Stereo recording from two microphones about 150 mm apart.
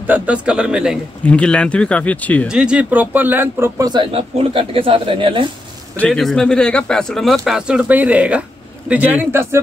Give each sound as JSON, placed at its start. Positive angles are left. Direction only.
{"t": 0.0, "sound": "speech", "side_deg": -10}
{"t": 1.2, "sound": "speech", "side_deg": 5}
{"t": 2.4, "sound": "speech", "side_deg": -5}
{"t": 4.1, "sound": "speech", "side_deg": -40}
{"t": 5.9, "sound": "speech", "side_deg": 5}